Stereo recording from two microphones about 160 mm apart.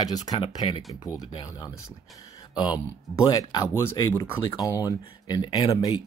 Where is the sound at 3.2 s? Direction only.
25° left (ahead or behind).